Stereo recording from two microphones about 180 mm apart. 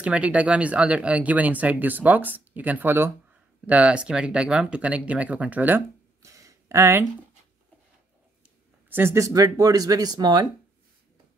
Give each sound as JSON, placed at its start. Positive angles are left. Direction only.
{"t": 0.0, "sound": "speech", "side_deg": -5}
{"t": 8.8, "sound": "speech", "side_deg": -10}